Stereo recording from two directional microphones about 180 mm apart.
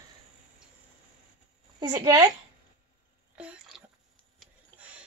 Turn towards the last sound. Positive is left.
turn(degrees=-5)  # may be behind; listen again after turning